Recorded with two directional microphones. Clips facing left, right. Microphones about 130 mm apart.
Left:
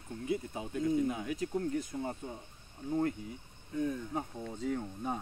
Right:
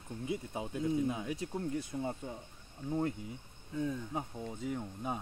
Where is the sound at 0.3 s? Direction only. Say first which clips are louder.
Left 3 dB; 20° right (ahead or behind).